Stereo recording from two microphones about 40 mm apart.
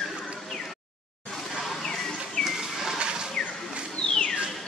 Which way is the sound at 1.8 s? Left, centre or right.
Centre.